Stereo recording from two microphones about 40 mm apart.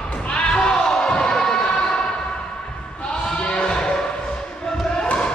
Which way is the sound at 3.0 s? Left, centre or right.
Left.